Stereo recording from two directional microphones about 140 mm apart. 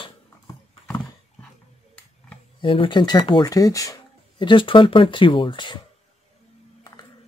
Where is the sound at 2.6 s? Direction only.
40° left (ahead or behind).